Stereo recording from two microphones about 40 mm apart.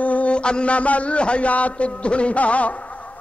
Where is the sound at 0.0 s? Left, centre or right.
Left.